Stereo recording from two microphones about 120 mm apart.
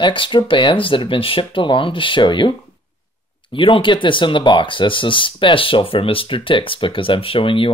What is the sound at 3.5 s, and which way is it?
Speech, 45° left (ahead or behind).